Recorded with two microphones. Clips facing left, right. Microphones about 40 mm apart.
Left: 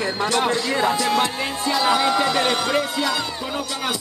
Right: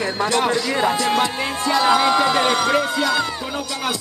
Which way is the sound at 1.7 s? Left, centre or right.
Right.